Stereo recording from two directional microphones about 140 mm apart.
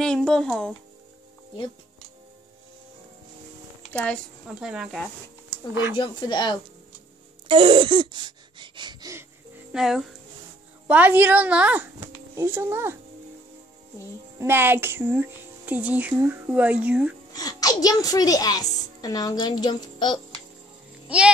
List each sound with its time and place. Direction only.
0.0 s a child's voice: 5° left (ahead or behind)
3.9 s speech: 10° left (ahead or behind)
4.6 s a child's voice: 5° right (ahead or behind)
5.5 s speech: 20° right (ahead or behind)
5.9 s speech: 35° left (ahead or behind)
7.4 s a sound: 35° right (ahead or behind)
9.7 s a woman's voice: 5° right (ahead or behind)
14.4 s speech: 15° right (ahead or behind)
17.3 s a child's voice: 25° left (ahead or behind)